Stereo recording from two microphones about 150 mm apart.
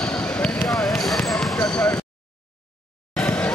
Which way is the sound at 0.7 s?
Centre (ahead or behind).